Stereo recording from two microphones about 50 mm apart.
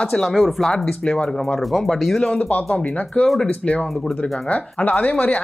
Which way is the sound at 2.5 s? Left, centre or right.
Left.